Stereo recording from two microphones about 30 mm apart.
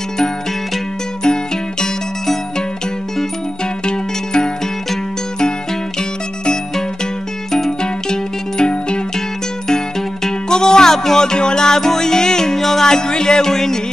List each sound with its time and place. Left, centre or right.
1.2 s music: left
3.8 s zither: left
7.8 s music: left
10.2 s music: left